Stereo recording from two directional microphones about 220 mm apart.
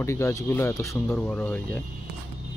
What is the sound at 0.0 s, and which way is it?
Speech, 10° left (ahead or behind).